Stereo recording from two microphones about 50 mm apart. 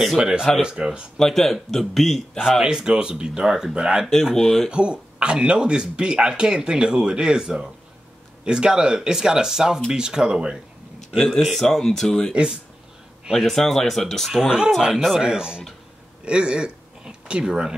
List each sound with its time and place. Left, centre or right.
0.2 s speech: centre
1.1 s speech: centre
2.6 s speech: centre
4.3 s speech: centre
4.6 s speech: centre
11.1 s speech: centre
14.4 s speech: centre